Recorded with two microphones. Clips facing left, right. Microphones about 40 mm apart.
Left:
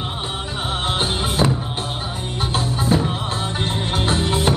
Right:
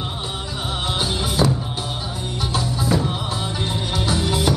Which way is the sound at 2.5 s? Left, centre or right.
Left.